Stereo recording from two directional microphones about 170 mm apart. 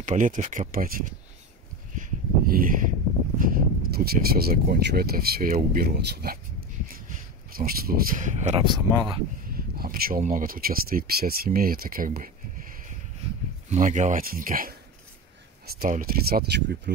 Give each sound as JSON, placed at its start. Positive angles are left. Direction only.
{"t": 0.0, "sound": "speech", "side_deg": -50}
{"t": 2.0, "sound": "a sound", "side_deg": -55}
{"t": 3.3, "sound": "speech", "side_deg": -55}
{"t": 7.5, "sound": "speech", "side_deg": -60}
{"t": 8.6, "sound": "speech", "side_deg": -25}
{"t": 9.5, "sound": "speech", "side_deg": -60}
{"t": 13.7, "sound": "speech", "side_deg": -45}